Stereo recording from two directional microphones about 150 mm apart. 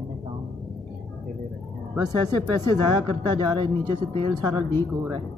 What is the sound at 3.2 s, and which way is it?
Speech, 30° right (ahead or behind).